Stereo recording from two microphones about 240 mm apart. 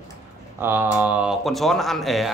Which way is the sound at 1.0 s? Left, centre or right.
Centre.